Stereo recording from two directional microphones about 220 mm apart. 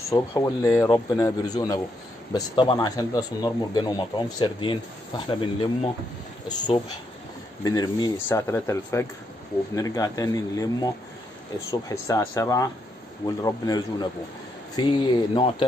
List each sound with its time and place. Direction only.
0.1 s speech: 15° left (ahead or behind)
7.6 s speech: 15° left (ahead or behind)
11.9 s speech: 15° left (ahead or behind)